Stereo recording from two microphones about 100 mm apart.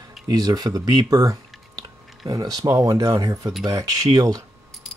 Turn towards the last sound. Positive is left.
turn(degrees=-40)  # may be behind; listen again after turning